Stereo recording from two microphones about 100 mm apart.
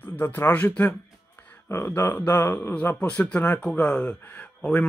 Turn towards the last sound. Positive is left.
turn(degrees=15)  # may be behind; listen again after turning